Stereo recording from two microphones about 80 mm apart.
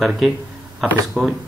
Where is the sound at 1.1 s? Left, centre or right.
Centre.